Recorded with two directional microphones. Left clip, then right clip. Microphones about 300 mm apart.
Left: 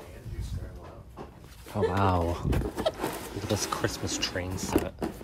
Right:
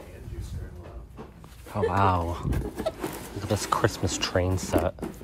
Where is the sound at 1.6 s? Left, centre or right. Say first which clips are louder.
Right 3 dB; centre.